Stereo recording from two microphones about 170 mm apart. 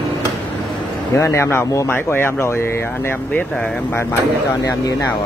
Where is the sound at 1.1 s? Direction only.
15° left (ahead or behind).